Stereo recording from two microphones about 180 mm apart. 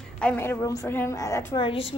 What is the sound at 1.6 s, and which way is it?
Speech, 30° left (ahead or behind).